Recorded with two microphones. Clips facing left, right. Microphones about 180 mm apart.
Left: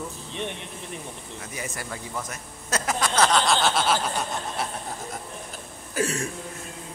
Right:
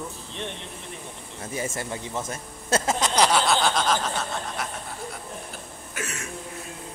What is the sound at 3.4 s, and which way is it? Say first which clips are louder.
Snicker: even; centre (ahead or behind).